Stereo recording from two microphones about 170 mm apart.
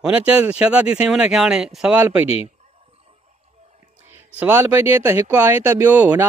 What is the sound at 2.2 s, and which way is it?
Speech, 35° left (ahead or behind).